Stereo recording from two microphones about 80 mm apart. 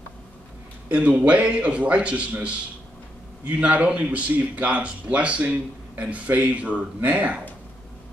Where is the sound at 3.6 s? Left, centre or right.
Centre.